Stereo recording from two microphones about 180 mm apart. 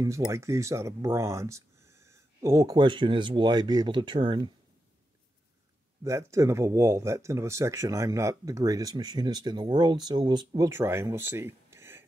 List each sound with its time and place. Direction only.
0.0 s speech: 15° right (ahead or behind)
6.0 s speech: 15° right (ahead or behind)